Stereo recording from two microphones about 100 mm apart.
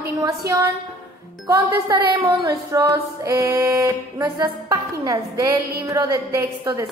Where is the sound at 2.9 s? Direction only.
30° right (ahead or behind).